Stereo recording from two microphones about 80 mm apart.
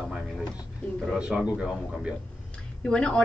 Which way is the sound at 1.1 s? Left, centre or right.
Centre.